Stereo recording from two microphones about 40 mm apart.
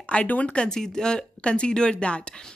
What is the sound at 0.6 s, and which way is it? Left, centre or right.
A woman's voice, centre.